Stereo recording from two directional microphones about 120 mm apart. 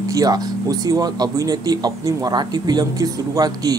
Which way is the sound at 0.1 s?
30° right (ahead or behind).